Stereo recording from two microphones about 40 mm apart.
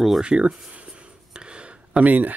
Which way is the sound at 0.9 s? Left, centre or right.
Right.